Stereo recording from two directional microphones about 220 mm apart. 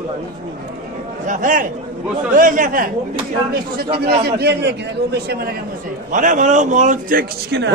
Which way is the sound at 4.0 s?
45° right (ahead or behind).